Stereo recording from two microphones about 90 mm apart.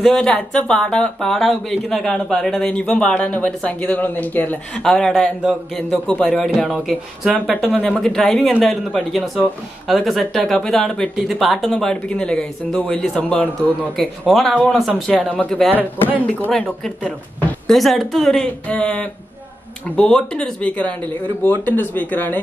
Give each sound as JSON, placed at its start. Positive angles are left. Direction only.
{"t": 0.0, "sound": "speech", "side_deg": 10}
{"t": 4.8, "sound": "speech", "side_deg": 5}
{"t": 7.4, "sound": "speech", "side_deg": 0}
{"t": 13.9, "sound": "speech", "side_deg": 5}
{"t": 15.7, "sound": "speech", "side_deg": -20}
{"t": 16.3, "sound": "speech", "side_deg": 15}